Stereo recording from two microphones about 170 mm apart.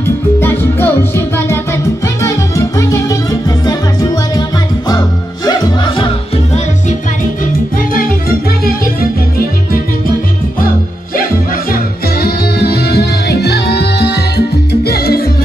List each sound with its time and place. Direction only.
0.4 s music: 15° left (ahead or behind); by 6.6 s 35° left (ahead or behind)
7.9 s music: 55° left (ahead or behind)
11.7 s music: 65° left (ahead or behind)